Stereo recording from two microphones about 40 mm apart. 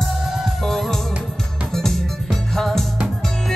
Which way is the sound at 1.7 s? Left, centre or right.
Centre.